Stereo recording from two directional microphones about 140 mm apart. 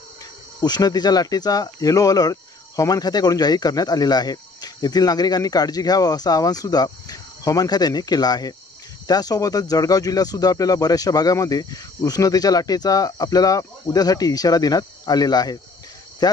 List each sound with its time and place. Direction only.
0.6 s speech: 30° left (ahead or behind)